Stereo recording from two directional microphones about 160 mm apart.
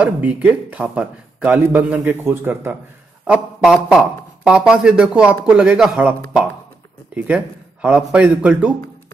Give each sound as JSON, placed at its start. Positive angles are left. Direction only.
{"t": 0.0, "sound": "speech", "side_deg": -10}